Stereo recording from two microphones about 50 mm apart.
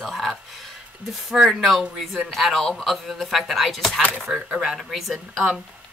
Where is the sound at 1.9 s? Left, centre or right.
Centre.